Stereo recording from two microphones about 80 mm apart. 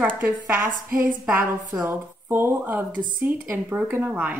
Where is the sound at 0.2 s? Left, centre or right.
Right.